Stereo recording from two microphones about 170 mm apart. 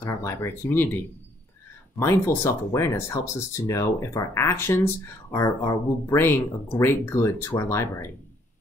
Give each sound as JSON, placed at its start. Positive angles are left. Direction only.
{"t": 0.0, "sound": "speech", "side_deg": 15}